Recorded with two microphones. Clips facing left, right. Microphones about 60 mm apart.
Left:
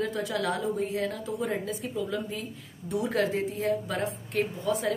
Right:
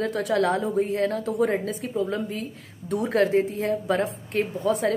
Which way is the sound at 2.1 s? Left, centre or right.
Right.